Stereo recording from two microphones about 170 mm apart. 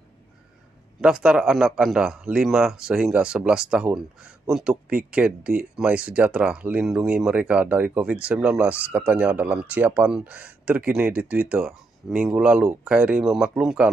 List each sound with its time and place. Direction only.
1.0 s speech: 5° right (ahead or behind)